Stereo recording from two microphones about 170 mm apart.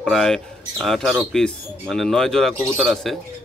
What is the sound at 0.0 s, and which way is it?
Speech, centre (ahead or behind).